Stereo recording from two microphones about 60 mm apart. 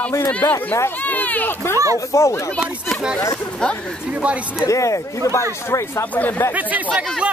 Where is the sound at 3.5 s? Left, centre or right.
Centre.